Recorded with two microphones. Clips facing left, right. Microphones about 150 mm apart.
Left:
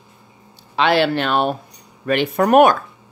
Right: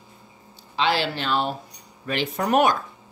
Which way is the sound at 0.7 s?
65° left (ahead or behind).